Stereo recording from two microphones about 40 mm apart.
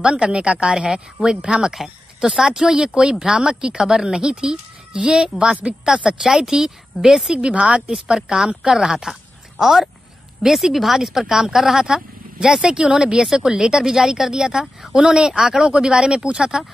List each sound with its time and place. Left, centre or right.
0.0 s a woman's voice: right; by 2.6 s centre
2.6 s speech: centre
6.0 s a woman's voice: centre
7.3 s speech: right
7.9 s a woman's voice: centre